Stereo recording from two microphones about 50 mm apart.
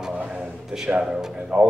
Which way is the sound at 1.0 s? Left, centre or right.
Centre.